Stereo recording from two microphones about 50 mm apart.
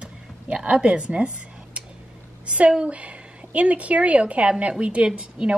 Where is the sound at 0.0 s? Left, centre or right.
Right.